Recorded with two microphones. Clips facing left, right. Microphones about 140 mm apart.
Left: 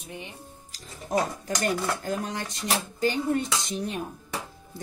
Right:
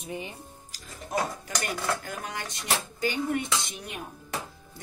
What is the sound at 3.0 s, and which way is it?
Speech, 35° left (ahead or behind).